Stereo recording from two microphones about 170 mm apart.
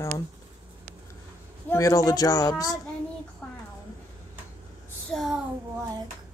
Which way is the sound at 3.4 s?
10° left (ahead or behind).